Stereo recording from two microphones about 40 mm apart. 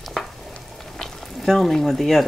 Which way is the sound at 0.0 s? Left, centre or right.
Centre.